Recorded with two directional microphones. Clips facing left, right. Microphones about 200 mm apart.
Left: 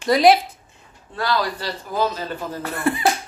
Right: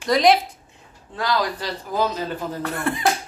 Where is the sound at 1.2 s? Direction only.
15° right (ahead or behind).